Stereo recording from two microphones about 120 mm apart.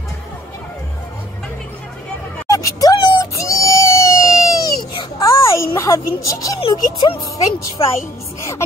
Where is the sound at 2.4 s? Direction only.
30° left (ahead or behind).